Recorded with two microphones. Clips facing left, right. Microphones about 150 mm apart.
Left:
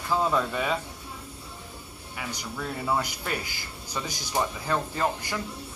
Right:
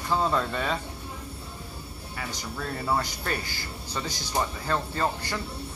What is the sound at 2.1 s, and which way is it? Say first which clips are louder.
Speech: even; 10° left (ahead or behind).